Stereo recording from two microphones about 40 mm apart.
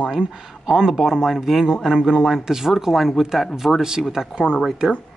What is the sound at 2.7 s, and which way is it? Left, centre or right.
Speech, centre.